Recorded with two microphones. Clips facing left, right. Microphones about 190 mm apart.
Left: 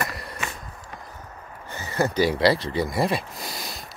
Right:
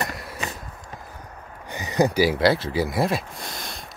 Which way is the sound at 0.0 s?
Centre (ahead or behind).